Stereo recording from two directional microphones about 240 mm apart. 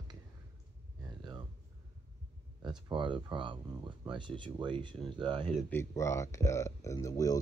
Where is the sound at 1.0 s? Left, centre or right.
Centre.